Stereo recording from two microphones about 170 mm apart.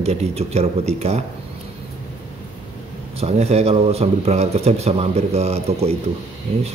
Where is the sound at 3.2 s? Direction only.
40° right (ahead or behind).